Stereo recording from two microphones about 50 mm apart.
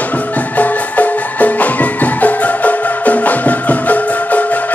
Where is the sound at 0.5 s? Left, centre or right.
Left.